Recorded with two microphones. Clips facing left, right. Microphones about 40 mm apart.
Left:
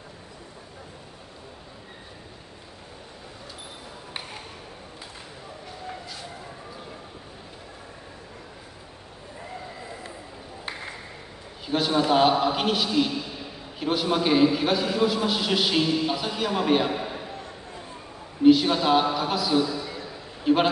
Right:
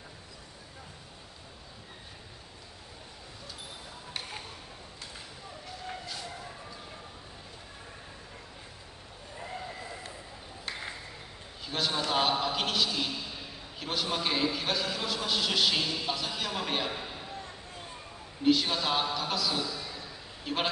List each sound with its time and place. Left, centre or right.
11.6 s a man's voice: centre; by 17.4 s left
18.4 s a man's voice: centre
19.6 s a sound: left
20.4 s a man's voice: centre